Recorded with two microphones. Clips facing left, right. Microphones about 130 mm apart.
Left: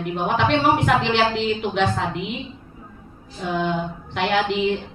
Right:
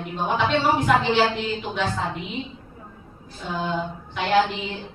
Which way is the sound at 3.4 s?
60° left (ahead or behind).